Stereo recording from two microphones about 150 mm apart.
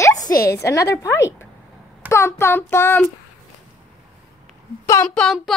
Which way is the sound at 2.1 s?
20° left (ahead or behind).